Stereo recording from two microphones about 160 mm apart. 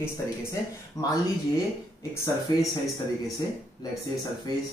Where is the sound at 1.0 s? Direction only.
20° left (ahead or behind).